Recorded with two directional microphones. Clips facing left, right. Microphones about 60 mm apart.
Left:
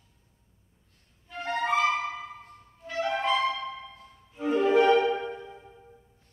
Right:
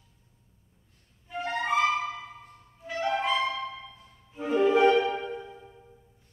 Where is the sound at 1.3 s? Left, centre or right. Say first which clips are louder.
Even; centre.